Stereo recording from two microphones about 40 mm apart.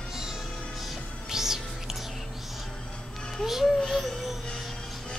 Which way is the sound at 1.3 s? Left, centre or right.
Centre.